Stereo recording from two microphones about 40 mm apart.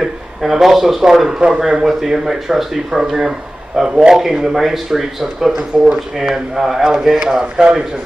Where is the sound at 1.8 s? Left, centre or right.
Centre.